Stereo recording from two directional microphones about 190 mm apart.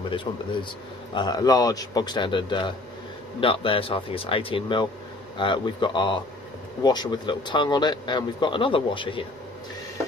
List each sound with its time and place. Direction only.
0.1 s a man's voice: 25° left (ahead or behind)